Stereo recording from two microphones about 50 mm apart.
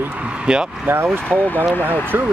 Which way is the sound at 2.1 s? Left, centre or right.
Right.